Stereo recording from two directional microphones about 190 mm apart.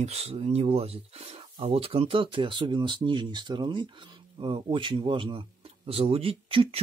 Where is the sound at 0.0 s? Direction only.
35° right (ahead or behind).